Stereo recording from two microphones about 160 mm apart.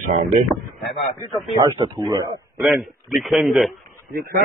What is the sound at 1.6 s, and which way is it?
Speech, 25° right (ahead or behind).